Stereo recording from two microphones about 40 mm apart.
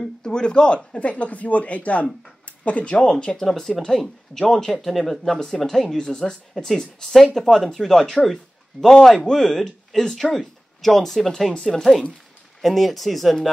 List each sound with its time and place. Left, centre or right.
0.2 s a man's voice: left
0.9 s speech: left
2.4 s a sound: left
3.0 s speech: centre
3.4 s speech: centre
9.3 s speech: centre